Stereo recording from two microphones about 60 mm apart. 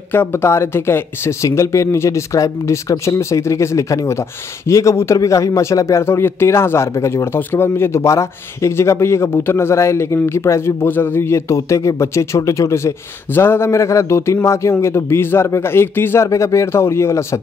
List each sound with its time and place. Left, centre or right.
0.1 s speech: left
1.4 s speech: left
6.0 s speech: left
7.3 s speech: left
16.3 s speech: left